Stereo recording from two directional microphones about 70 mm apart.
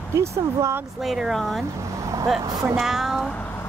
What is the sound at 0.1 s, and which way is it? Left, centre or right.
Speech, right.